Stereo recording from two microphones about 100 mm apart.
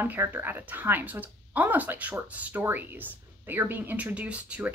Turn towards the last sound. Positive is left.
turn(degrees=-15)  # may be behind; listen again after turning